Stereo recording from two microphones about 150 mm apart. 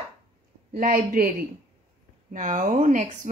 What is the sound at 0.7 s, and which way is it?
Speech, 70° right (ahead or behind).